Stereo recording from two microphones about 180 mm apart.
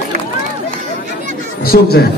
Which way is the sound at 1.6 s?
60° left (ahead or behind).